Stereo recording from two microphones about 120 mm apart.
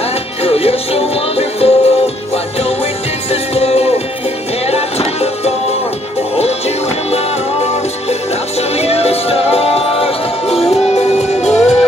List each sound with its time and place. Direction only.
0.4 s music: 55° left (ahead or behind)
7.6 s music: 60° left (ahead or behind)